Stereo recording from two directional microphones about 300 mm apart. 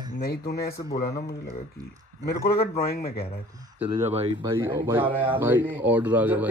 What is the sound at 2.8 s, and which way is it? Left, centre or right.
Speech, left.